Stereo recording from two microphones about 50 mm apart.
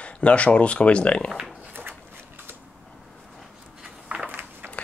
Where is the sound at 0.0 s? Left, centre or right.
Left.